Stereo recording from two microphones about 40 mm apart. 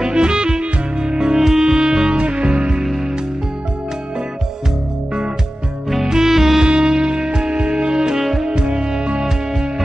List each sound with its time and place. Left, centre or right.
0.0 s music: right
6.0 s music: centre
8.2 s music: centre
8.5 s music: right